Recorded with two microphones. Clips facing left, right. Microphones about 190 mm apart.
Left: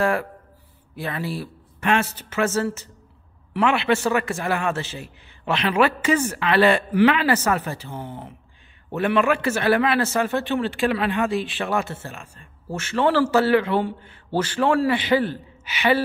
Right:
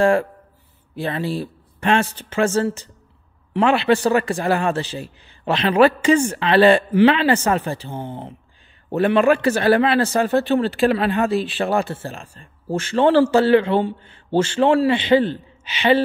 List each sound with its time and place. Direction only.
0.0 s a man's voice: 30° right (ahead or behind)